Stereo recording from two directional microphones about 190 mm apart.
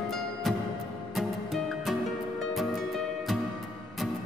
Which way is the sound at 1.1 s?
Centre (ahead or behind).